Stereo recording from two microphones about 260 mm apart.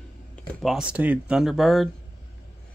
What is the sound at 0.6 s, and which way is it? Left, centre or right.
Speech, centre.